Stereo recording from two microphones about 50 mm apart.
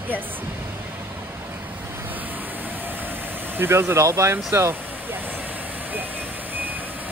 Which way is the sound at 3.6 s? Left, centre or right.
Right.